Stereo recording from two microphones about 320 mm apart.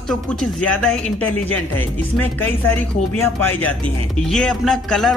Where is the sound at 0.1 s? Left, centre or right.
Centre.